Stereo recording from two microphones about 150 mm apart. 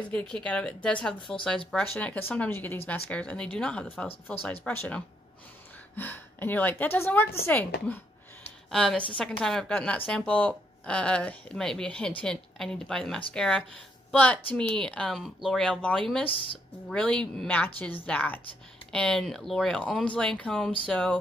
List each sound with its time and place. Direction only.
0.1 s a woman's voice: 5° left (ahead or behind)
16.3 s speech: 35° left (ahead or behind)
16.9 s speech: 5° left (ahead or behind)